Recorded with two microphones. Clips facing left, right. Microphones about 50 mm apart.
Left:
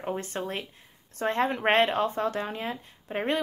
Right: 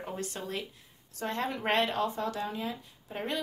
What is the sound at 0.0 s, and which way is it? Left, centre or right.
A woman's voice, left.